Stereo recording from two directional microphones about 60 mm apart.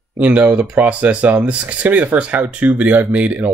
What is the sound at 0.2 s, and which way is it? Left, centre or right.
Speech, right.